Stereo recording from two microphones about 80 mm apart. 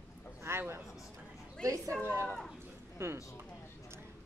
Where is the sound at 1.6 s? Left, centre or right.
Centre.